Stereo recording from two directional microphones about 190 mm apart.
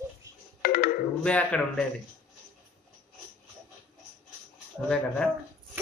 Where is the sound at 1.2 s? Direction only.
5° left (ahead or behind).